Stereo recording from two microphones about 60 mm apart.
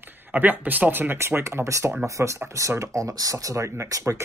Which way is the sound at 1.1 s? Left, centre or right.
Right.